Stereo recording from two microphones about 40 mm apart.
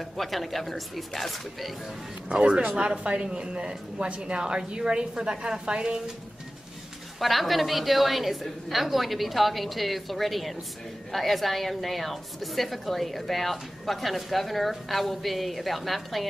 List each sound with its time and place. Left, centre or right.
0.0 s a woman's voice: centre
2.3 s a woman's voice: right
7.2 s a woman's voice: centre